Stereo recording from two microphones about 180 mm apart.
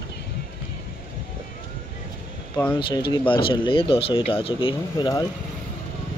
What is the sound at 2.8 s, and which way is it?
Speech, 25° left (ahead or behind).